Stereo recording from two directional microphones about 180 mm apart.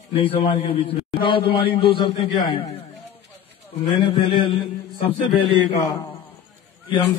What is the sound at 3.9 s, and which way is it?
Speech, 25° left (ahead or behind).